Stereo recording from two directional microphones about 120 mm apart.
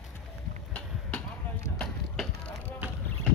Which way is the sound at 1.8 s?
10° left (ahead or behind).